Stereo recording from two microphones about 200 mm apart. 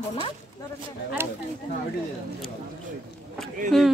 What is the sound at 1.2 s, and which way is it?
Speech, 10° right (ahead or behind).